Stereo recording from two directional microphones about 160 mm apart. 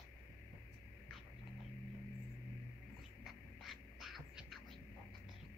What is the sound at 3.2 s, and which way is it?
Music, centre (ahead or behind).